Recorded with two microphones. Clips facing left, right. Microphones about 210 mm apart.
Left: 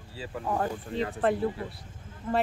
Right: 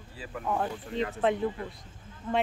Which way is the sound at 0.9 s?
35° left (ahead or behind).